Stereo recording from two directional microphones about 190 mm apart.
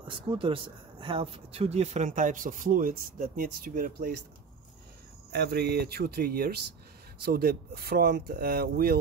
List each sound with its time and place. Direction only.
0.3 s speech: 25° right (ahead or behind); by 4.1 s 50° right (ahead or behind)
5.3 s speech: 60° right (ahead or behind)